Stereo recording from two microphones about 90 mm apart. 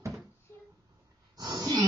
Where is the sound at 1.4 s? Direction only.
45° right (ahead or behind).